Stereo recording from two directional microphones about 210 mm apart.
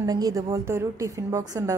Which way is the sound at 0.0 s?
15° right (ahead or behind).